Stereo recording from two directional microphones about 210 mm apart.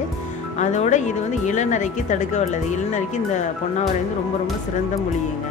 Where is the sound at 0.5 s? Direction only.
35° left (ahead or behind).